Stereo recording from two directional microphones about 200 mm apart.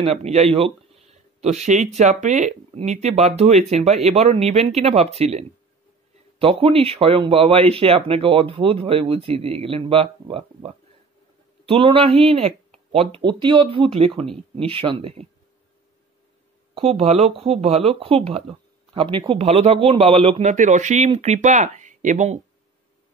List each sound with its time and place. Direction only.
0.0 s speech: 30° right (ahead or behind)
6.4 s speech: 30° right (ahead or behind)
16.7 s speech: 30° right (ahead or behind)